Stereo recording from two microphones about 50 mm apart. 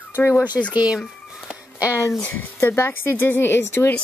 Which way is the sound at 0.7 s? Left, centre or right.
Right.